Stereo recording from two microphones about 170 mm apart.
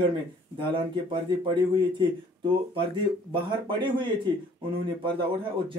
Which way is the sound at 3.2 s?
30° right (ahead or behind).